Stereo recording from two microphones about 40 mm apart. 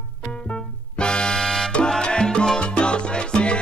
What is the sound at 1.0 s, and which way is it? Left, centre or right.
Music, left.